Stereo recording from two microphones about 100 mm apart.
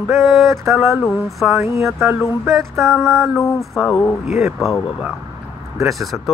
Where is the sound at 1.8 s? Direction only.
Centre (ahead or behind).